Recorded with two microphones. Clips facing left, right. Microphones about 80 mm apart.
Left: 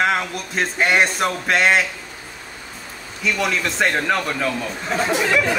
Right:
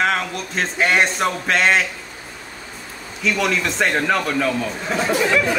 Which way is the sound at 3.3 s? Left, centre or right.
Centre.